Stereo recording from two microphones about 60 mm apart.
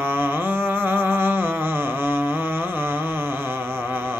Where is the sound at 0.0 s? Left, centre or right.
Right.